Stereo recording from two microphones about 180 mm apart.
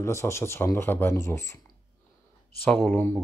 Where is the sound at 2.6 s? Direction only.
5° left (ahead or behind).